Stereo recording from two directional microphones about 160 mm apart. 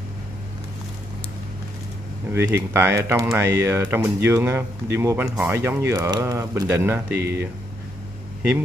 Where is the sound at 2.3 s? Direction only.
15° right (ahead or behind).